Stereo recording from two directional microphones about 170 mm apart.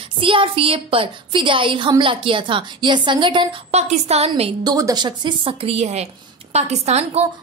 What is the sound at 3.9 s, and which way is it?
Speech, 40° right (ahead or behind).